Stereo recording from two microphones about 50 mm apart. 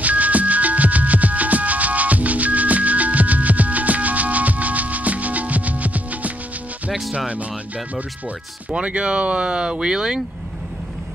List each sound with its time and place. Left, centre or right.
0.0 s music: right
6.9 s speech: centre
8.7 s speech: right